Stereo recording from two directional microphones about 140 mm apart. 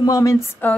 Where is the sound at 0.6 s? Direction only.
15° left (ahead or behind).